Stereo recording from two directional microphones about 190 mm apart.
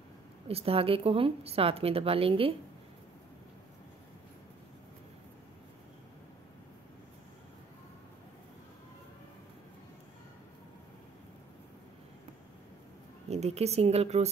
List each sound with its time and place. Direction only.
0.5 s a woman's voice: 30° right (ahead or behind)
13.3 s a woman's voice: 35° right (ahead or behind)